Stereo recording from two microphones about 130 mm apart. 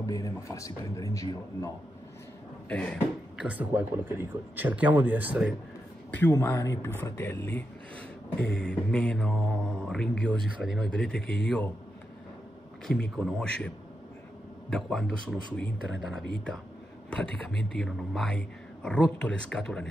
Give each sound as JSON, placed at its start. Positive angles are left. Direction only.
{"t": 0.0, "sound": "a man's voice", "side_deg": 25}
{"t": 2.7, "sound": "mantra", "side_deg": 10}
{"t": 3.3, "sound": "speech", "side_deg": -10}
{"t": 6.1, "sound": "mantra", "side_deg": 15}
{"t": 10.4, "sound": "speech", "side_deg": 0}
{"t": 12.8, "sound": "mantra", "side_deg": 5}
{"t": 13.1, "sound": "speech", "side_deg": 0}
{"t": 14.7, "sound": "speech", "side_deg": 5}
{"t": 16.0, "sound": "speech", "side_deg": -5}